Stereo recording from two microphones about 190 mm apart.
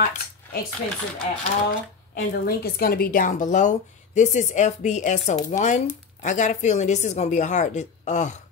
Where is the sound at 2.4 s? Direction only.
50° left (ahead or behind).